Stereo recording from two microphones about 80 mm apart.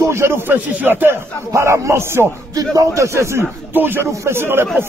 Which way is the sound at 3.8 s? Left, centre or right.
Right.